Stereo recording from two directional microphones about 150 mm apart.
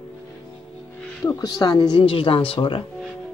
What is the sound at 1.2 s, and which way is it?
Speech, 25° left (ahead or behind).